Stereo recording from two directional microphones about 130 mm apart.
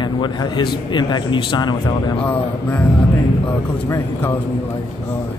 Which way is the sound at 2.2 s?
10° left (ahead or behind).